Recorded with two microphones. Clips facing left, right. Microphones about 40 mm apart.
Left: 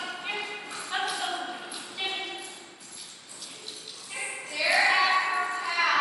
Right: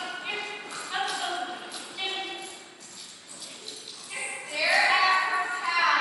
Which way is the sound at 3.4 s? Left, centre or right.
Centre.